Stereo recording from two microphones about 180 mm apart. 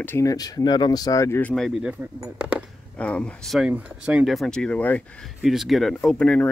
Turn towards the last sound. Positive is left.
turn(degrees=5)  # may be behind; listen again after turning